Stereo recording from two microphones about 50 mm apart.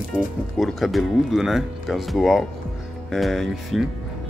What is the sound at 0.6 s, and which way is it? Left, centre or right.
Speech, centre.